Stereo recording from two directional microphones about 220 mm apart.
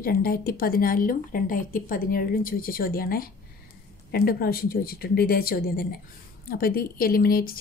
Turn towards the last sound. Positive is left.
turn(degrees=40)  # may be behind; listen again after turning